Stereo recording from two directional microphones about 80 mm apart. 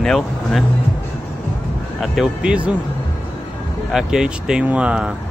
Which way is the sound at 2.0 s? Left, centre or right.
Centre.